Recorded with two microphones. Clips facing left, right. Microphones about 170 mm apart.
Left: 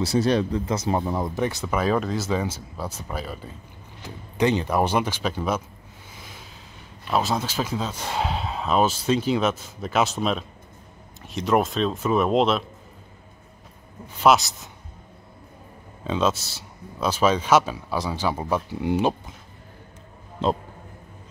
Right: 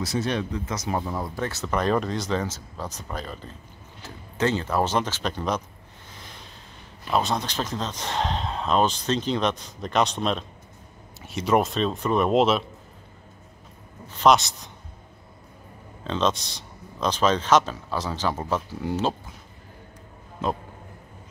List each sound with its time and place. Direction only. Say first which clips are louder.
0.0 s speech: left 5 dB; 35° left (ahead or behind); by 5.6 s 5° left (ahead or behind)
6.1 s vehicle: left 1 dB; 5° left (ahead or behind)
7.1 s speech: left 1 dB; 5° left (ahead or behind)
14.2 s speech: even; 5° left (ahead or behind)
16.0 s speech: left 1 dB; 10° left (ahead or behind)
20.4 s speech: left 4 dB; 30° left (ahead or behind)